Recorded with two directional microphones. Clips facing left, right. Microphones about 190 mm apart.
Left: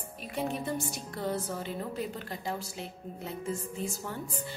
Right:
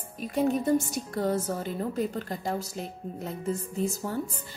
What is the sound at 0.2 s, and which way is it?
A woman's voice, 40° right (ahead or behind).